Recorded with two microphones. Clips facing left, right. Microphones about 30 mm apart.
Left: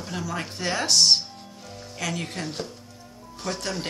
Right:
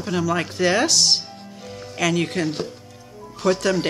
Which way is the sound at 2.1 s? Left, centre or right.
Right.